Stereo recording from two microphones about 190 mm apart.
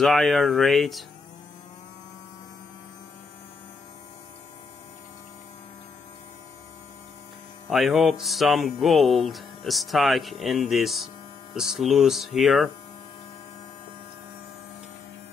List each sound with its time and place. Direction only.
0.0 s speech: centre (ahead or behind)
7.7 s speech: centre (ahead or behind)